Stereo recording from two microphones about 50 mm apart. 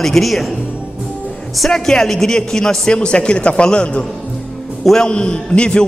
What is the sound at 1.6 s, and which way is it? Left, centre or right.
A man's voice, centre.